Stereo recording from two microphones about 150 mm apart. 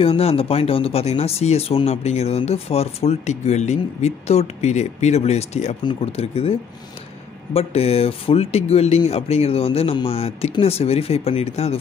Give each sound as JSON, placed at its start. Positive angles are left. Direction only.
{"t": 0.0, "sound": "speech", "side_deg": 40}
{"t": 7.5, "sound": "speech", "side_deg": 40}